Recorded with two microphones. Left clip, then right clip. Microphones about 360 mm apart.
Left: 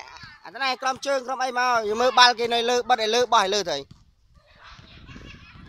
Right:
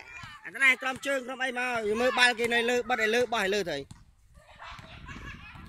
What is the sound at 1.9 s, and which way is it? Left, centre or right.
Speech, left.